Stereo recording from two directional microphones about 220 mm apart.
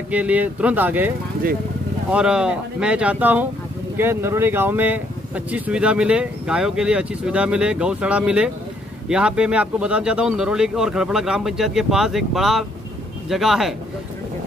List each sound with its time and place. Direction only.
0.1 s speech: 5° right (ahead or behind)
1.4 s speech: 40° right (ahead or behind)
2.0 s speech: 5° right (ahead or behind)